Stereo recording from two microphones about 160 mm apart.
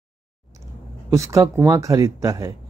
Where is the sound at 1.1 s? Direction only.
20° right (ahead or behind).